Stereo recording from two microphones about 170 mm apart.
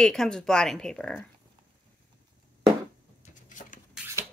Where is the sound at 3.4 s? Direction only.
50° left (ahead or behind).